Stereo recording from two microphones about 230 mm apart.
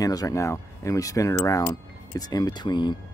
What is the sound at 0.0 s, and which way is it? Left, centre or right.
Speech, centre.